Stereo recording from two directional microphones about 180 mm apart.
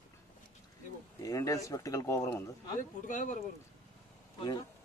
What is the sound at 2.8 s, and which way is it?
Speech, 45° left (ahead or behind).